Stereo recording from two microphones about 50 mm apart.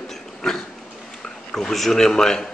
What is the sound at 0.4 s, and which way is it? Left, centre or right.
A woman's voice, centre.